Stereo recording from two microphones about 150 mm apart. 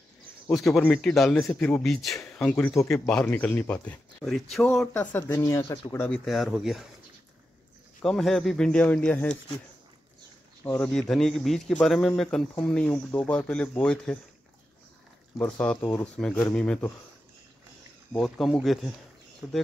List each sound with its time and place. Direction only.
0.5 s a man's voice: centre (ahead or behind); by 6.0 s 20° left (ahead or behind)
6.0 s a man's voice: 5° left (ahead or behind)
8.0 s a man's voice: centre (ahead or behind)
10.6 s a man's voice: 10° left (ahead or behind)
15.3 s speech: 10° left (ahead or behind)
18.1 s a man's voice: centre (ahead or behind)